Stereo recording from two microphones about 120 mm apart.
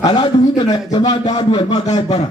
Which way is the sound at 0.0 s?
45° left (ahead or behind).